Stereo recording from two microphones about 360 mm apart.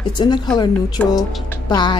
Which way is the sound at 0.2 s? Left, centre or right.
Centre.